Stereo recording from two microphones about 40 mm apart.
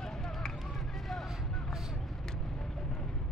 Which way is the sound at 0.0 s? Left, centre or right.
Centre.